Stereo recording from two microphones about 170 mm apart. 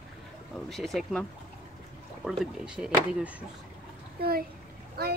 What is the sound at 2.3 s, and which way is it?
Speech, 5° right (ahead or behind).